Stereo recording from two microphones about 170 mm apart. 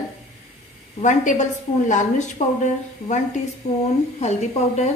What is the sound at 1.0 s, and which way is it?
A woman's voice, 45° left (ahead or behind).